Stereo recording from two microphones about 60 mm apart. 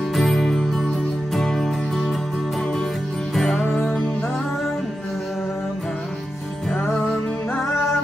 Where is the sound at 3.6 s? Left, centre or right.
Left.